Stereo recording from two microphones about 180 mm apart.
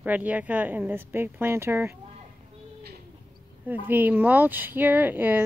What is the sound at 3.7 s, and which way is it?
Speech, 10° right (ahead or behind).